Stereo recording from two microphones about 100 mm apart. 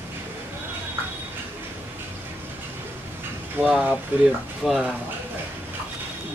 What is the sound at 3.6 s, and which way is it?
Speech, 20° right (ahead or behind).